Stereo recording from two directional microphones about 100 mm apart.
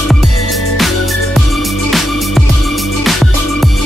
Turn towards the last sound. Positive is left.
turn(degrees=0)  # may be behind; listen again after turning